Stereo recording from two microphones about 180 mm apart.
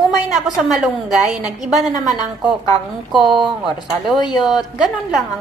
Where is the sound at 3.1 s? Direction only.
Centre (ahead or behind).